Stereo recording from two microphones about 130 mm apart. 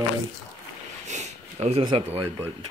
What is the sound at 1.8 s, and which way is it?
Speech, 45° right (ahead or behind).